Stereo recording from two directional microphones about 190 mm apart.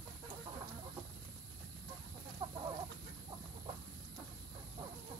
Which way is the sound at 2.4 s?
25° right (ahead or behind).